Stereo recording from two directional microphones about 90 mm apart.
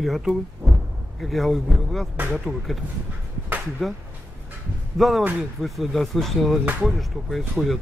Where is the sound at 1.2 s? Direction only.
Centre (ahead or behind).